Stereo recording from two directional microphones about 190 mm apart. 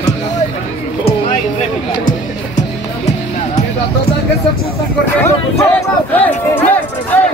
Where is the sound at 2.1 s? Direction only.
40° left (ahead or behind).